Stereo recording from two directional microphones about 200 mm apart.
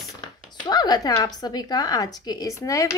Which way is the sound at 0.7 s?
20° left (ahead or behind).